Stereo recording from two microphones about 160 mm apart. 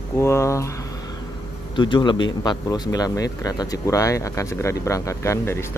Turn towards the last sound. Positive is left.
turn(degrees=15)  # may be behind; listen again after turning